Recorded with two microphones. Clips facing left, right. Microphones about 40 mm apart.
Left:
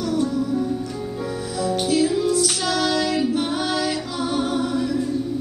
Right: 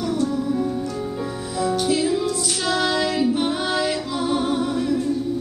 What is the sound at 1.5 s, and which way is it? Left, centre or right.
Music, right.